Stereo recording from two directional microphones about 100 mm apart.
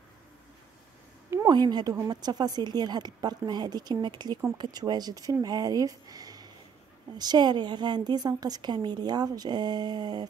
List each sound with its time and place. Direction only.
1.5 s a woman's voice: 45° right (ahead or behind)